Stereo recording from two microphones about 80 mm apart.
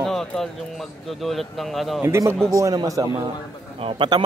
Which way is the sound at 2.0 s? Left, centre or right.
Right.